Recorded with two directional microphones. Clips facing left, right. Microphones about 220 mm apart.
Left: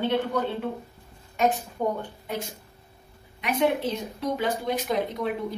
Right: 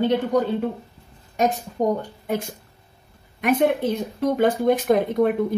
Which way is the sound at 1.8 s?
40° right (ahead or behind).